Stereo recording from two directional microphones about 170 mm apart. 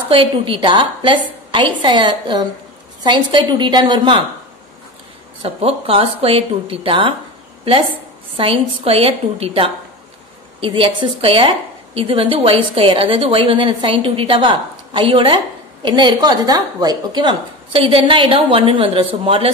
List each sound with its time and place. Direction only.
0.1 s a woman's voice: 30° right (ahead or behind)
5.4 s a woman's voice: 35° right (ahead or behind)
8.4 s a woman's voice: 35° right (ahead or behind)